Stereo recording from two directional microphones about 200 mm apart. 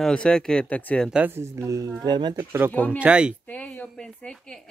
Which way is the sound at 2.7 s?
10° left (ahead or behind).